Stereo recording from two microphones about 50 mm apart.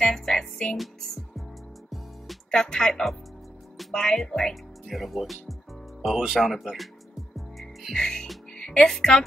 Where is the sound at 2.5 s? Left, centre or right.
Centre.